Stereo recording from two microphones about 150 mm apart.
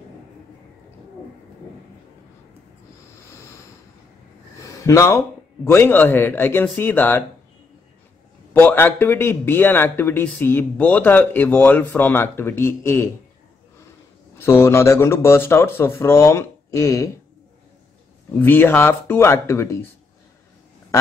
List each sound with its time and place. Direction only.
4.6 s a man's voice: 20° left (ahead or behind)
8.5 s a man's voice: 15° left (ahead or behind)
14.4 s a man's voice: 15° left (ahead or behind)
18.4 s a man's voice: 15° left (ahead or behind)